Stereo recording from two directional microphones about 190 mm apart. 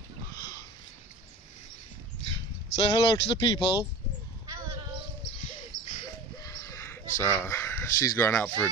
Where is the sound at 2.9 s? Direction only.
25° left (ahead or behind).